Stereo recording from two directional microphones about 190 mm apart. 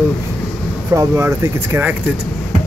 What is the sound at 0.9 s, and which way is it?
Speech, 15° right (ahead or behind).